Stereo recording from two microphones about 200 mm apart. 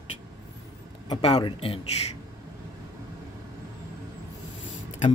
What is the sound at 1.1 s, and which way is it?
Speech, 25° left (ahead or behind).